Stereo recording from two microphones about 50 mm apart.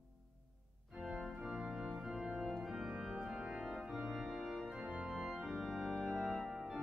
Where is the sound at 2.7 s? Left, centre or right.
Centre.